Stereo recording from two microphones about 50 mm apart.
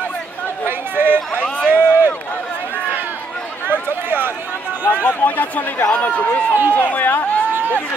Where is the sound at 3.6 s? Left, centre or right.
Right.